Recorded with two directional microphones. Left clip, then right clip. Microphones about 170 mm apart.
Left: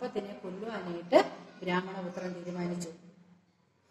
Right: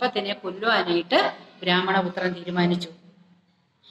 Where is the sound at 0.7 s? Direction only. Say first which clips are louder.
Right 14 dB; 40° right (ahead or behind).